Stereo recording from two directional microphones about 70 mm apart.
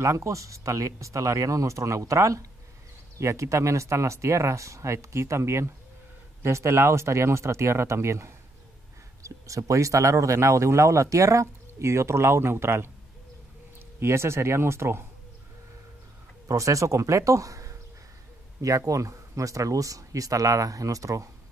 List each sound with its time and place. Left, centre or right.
0.0 s speech: right
13.9 s speech: right
16.4 s speech: right